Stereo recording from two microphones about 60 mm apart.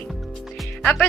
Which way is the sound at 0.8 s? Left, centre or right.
Left.